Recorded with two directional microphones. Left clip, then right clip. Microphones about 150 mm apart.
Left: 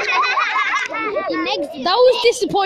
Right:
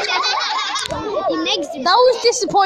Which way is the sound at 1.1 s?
15° left (ahead or behind).